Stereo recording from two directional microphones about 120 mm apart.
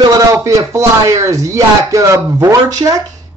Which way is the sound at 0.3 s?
25° right (ahead or behind).